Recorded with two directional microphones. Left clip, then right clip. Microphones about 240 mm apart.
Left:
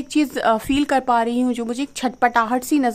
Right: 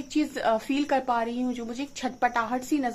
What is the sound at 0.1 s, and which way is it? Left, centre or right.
A woman's voice, left.